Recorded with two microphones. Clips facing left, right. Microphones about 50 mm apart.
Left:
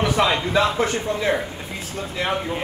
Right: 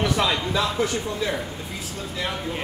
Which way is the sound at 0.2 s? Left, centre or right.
Left.